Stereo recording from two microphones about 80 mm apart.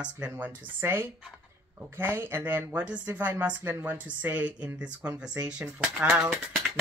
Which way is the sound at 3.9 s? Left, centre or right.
Centre.